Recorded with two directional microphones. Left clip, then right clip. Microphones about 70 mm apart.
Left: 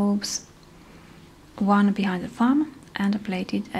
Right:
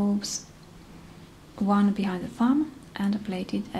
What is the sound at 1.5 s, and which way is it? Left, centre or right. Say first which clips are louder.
Speech: left 4 dB; left.